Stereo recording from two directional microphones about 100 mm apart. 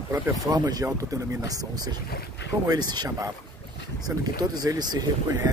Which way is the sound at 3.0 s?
35° right (ahead or behind).